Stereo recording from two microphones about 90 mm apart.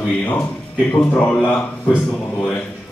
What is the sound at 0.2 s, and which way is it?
Speech, 20° left (ahead or behind).